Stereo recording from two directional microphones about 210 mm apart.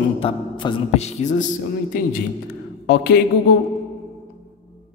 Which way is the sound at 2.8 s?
50° left (ahead or behind).